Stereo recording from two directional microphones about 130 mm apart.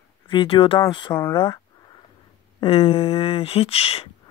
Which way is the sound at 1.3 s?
35° left (ahead or behind).